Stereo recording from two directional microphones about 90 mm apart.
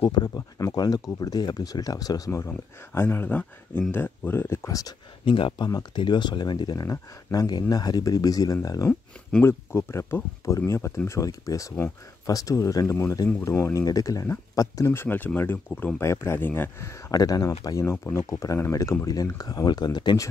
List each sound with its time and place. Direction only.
0.0 s speech: 50° left (ahead or behind); by 3.3 s 25° left (ahead or behind)
3.3 s speech: 15° left (ahead or behind); by 4.9 s 40° left (ahead or behind)
5.2 s speech: 70° left (ahead or behind)
5.7 s speech: 55° left (ahead or behind)
6.8 s speech: 40° left (ahead or behind)
9.4 s speech: 30° left (ahead or behind)
14.9 s speech: 25° left (ahead or behind); by 20.2 s 50° left (ahead or behind)